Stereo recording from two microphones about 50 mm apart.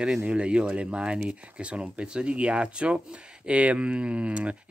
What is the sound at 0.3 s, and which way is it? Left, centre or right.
Speech, right.